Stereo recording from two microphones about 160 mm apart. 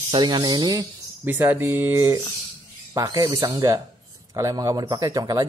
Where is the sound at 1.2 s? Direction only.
10° right (ahead or behind).